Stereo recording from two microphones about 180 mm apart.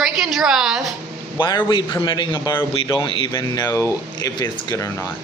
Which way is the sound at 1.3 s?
25° left (ahead or behind).